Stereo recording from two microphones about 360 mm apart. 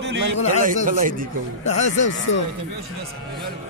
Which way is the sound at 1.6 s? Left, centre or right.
Centre.